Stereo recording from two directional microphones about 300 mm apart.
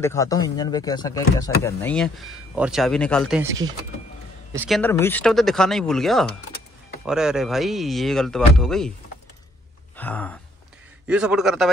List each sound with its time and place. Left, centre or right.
0.0 s speech: centre
9.9 s speech: centre